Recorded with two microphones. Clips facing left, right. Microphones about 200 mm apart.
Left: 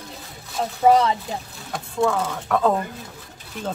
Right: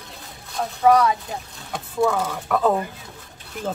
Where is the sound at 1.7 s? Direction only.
5° right (ahead or behind).